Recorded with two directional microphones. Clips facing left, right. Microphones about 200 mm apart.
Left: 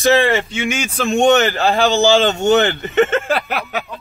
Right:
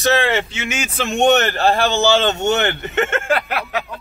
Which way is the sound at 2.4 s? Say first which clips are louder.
Left 4 dB; 15° left (ahead or behind).